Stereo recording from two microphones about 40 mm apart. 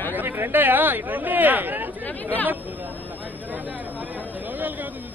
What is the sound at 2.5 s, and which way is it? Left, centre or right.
Chatter, right.